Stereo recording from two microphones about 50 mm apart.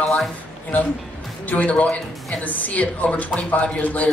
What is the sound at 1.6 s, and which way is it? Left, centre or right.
A woman's voice, left.